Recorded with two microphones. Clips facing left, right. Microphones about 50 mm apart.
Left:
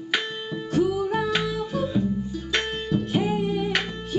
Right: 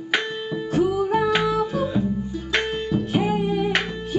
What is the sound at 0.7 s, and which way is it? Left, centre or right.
Music, centre.